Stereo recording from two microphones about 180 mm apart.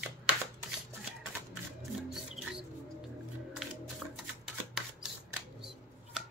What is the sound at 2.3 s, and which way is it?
Mouse, 5° right (ahead or behind).